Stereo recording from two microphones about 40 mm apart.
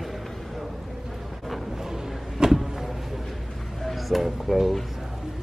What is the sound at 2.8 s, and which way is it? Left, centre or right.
Music, centre.